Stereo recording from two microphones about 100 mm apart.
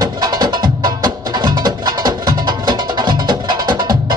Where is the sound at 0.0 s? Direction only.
45° right (ahead or behind).